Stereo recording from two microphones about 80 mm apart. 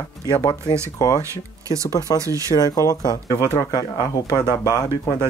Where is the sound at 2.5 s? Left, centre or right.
Left.